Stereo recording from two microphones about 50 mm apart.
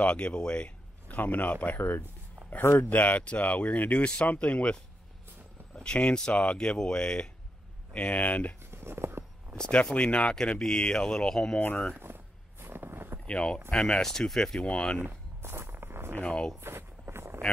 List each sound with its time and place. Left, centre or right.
0.0 s speech: left
1.8 s speech: left
2.9 s speech: left
5.8 s speech: left
7.9 s speech: left
8.6 s writing: right
9.9 s speech: left
11.9 s a sound: right
13.2 s speech: centre
14.0 s speech: centre
15.0 s walk: right
16.2 s speech: left
16.6 s a sound: right